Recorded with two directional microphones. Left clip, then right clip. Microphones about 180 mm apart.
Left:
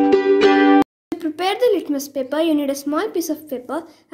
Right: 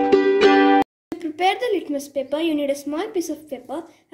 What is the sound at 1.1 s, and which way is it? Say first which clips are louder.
Speech: even; 40° left (ahead or behind).